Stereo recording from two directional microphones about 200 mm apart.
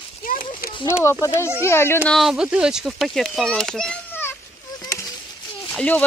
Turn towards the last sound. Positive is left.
turn(degrees=5)  # may be behind; listen again after turning